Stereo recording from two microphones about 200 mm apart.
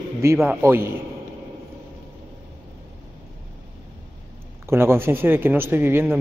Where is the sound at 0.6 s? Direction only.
10° right (ahead or behind).